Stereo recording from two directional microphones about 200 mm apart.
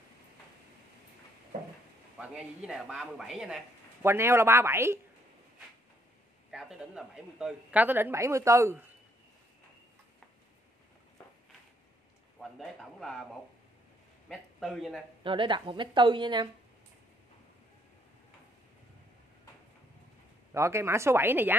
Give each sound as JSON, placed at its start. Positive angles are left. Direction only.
{"t": 2.1, "sound": "speech", "side_deg": -5}
{"t": 6.5, "sound": "speech", "side_deg": -5}
{"t": 12.4, "sound": "speech", "side_deg": 0}
{"t": 14.3, "sound": "a man's voice", "side_deg": 0}
{"t": 15.2, "sound": "a woman's voice", "side_deg": -25}
{"t": 20.5, "sound": "speech", "side_deg": -15}